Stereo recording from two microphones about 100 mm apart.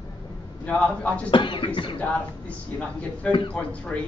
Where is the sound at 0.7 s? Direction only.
15° left (ahead or behind).